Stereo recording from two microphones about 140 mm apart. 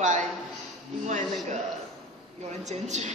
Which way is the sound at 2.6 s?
55° right (ahead or behind).